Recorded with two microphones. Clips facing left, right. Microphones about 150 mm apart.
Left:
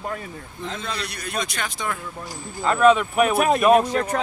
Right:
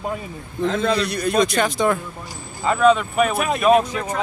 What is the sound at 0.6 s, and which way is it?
Speech, 90° right.